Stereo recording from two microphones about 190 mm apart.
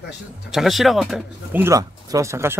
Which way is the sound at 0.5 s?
Centre (ahead or behind).